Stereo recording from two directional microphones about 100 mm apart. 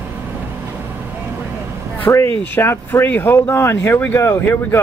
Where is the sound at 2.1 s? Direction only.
35° left (ahead or behind).